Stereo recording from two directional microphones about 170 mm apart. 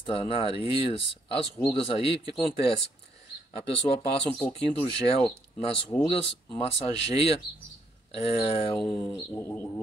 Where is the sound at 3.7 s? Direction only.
35° left (ahead or behind).